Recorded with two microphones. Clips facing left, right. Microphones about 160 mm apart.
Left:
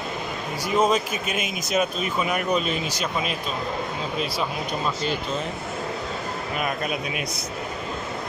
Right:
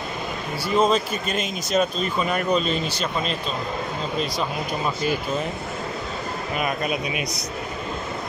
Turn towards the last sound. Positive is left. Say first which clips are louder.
# right 2 dB
turn(degrees=-5)  # may be behind; listen again after turning